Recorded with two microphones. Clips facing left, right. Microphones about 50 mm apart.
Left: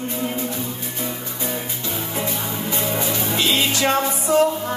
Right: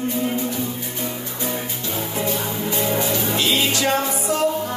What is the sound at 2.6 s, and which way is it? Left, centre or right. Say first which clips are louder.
Music: right 2 dB; left.